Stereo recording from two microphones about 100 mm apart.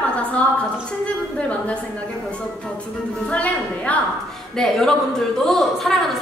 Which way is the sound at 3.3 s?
15° left (ahead or behind).